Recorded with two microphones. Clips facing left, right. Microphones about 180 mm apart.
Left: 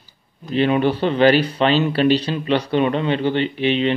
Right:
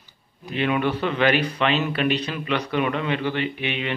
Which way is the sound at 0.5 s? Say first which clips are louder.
Left 6 dB; 30° left (ahead or behind).